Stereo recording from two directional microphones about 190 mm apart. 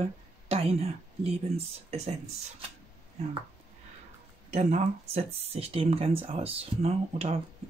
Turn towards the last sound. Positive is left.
turn(degrees=-35)  # may be behind; listen again after turning